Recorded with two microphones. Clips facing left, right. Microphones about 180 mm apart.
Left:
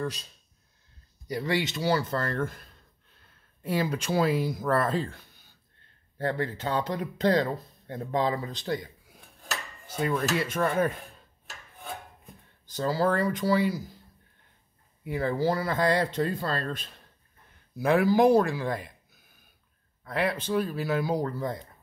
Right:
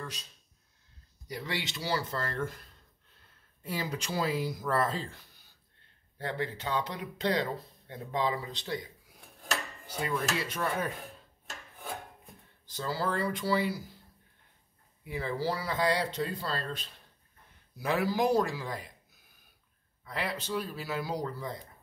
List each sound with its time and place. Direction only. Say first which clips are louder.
1.3 s speech: left 8 dB; 45° left (ahead or behind)
3.6 s speech: left 7 dB; 55° left (ahead or behind)
6.1 s speech: left 5 dB; 50° left (ahead or behind)
9.8 s speech: left 5 dB; 50° left (ahead or behind)
12.6 s speech: left 7 dB; 45° left (ahead or behind)
15.0 s speech: left 6 dB; 45° left (ahead or behind)
20.0 s speech: left 7 dB; 55° left (ahead or behind)